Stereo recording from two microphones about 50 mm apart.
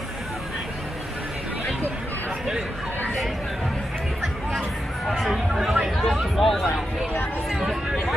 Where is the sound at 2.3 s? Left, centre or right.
Centre.